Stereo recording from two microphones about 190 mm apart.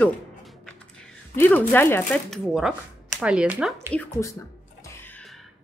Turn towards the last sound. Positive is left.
turn(degrees=10)  # may be behind; listen again after turning